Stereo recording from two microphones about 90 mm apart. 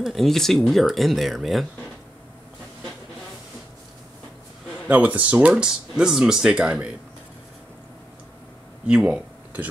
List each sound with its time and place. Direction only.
0.0 s speech: 5° left (ahead or behind)
4.8 s speech: 15° right (ahead or behind)
8.8 s a sound: 10° right (ahead or behind)